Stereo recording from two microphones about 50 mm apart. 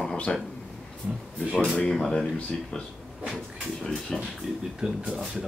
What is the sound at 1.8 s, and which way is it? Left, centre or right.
Speech, centre.